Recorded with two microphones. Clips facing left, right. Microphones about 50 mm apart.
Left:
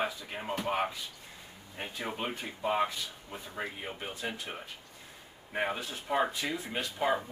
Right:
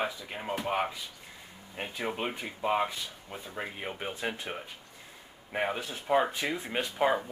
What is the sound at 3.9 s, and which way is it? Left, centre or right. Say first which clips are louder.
Speech: right 3 dB; right.